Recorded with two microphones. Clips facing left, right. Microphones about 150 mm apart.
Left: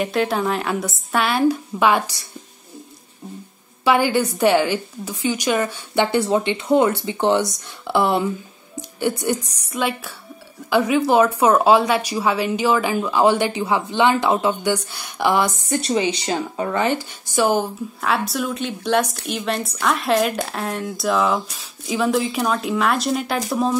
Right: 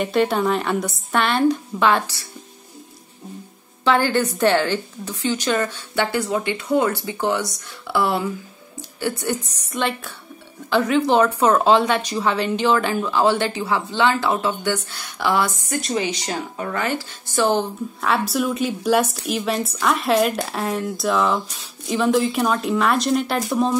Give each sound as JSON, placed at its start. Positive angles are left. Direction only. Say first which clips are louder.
{"t": 0.0, "sound": "speech", "louder": "right 1 dB", "side_deg": 0}
{"t": 3.8, "sound": "speech", "louder": "left 1 dB", "side_deg": 10}
{"t": 6.1, "sound": "speech", "louder": "left 4 dB", "side_deg": 25}
{"t": 18.0, "sound": "speech", "louder": "right 1 dB", "side_deg": 0}